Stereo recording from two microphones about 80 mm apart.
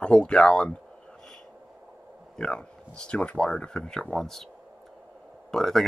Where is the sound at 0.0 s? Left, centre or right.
Centre.